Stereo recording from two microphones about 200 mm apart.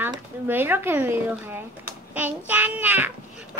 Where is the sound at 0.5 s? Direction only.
10° right (ahead or behind).